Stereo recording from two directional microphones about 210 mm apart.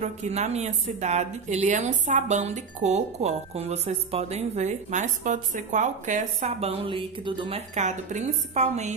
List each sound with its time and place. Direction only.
0.0 s a woman's voice: 35° right (ahead or behind)